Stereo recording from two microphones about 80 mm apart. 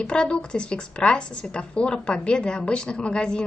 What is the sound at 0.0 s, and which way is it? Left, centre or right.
A woman's voice, centre.